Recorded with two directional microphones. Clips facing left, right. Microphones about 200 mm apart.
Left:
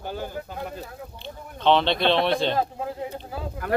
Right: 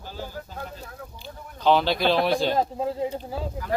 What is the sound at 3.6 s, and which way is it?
Speech, 60° left (ahead or behind).